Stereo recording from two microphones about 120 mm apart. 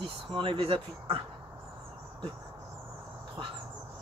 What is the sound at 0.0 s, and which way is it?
Speech, 45° right (ahead or behind).